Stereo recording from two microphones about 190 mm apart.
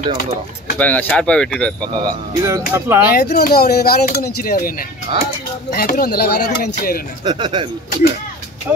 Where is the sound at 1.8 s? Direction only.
20° right (ahead or behind).